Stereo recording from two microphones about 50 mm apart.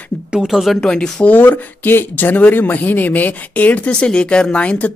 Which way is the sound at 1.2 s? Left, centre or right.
Left.